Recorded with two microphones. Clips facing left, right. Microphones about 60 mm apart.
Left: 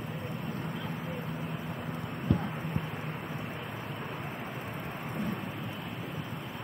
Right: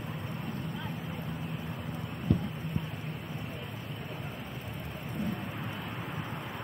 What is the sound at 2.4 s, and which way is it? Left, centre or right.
Vehicle, left.